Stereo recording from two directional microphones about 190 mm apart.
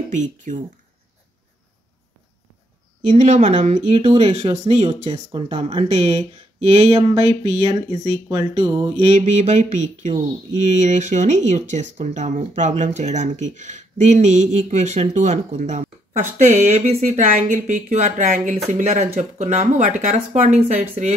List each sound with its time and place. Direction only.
0.1 s speech: 40° right (ahead or behind)
3.1 s speech: 40° right (ahead or behind); by 8.9 s 20° right (ahead or behind)
9.0 s speech: 40° right (ahead or behind)